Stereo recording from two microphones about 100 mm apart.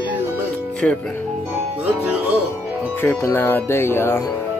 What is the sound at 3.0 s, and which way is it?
Speech, 25° left (ahead or behind).